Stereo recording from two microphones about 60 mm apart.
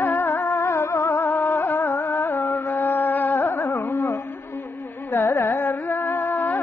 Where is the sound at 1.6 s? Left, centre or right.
Left.